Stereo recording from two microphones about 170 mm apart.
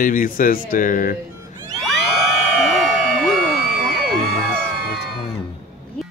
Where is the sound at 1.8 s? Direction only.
Centre (ahead or behind).